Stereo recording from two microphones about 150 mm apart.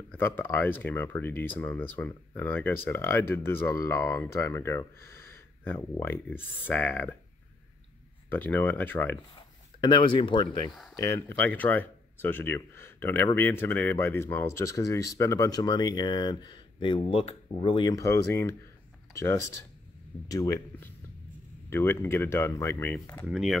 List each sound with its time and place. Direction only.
0.1 s speech: 15° left (ahead or behind)
8.3 s speech: 10° left (ahead or behind)
9.8 s speech: 30° left (ahead or behind)
11.0 s speech: 20° left (ahead or behind); by 17.9 s 35° left (ahead or behind)
17.9 s speech: 20° left (ahead or behind)
23.2 s speech: centre (ahead or behind)